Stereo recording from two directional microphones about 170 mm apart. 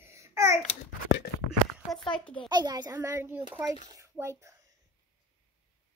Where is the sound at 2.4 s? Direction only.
25° right (ahead or behind).